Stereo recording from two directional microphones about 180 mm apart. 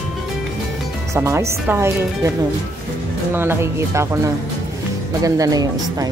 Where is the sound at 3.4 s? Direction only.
15° right (ahead or behind).